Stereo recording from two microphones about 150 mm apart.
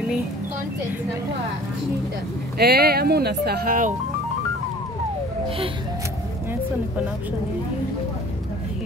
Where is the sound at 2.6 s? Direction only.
90° right; by 3.9 s 70° right (ahead or behind).